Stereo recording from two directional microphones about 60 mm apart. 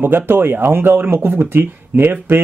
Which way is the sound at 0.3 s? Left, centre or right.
Right.